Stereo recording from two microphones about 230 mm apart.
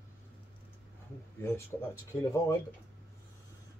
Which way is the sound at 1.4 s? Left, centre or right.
Centre.